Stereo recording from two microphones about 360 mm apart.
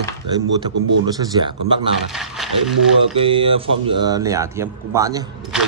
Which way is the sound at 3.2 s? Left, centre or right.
Centre.